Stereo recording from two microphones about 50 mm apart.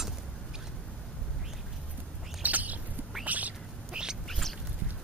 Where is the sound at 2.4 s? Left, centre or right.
Right.